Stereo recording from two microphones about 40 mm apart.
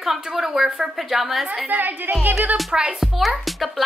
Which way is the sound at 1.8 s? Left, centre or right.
Right.